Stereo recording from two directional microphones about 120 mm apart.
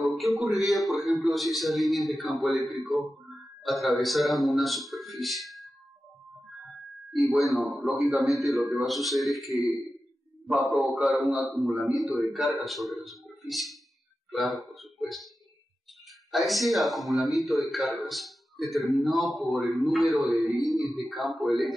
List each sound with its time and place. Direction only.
0.0 s a man's voice: centre (ahead or behind)
7.1 s a man's voice: centre (ahead or behind)
14.3 s a sound: centre (ahead or behind)
16.3 s a man's voice: centre (ahead or behind)